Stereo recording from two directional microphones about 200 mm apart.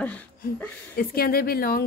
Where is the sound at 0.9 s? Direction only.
50° left (ahead or behind).